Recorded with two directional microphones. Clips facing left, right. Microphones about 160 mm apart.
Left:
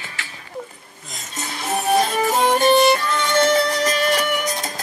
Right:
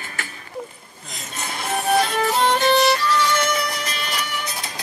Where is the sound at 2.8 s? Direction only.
50° left (ahead or behind).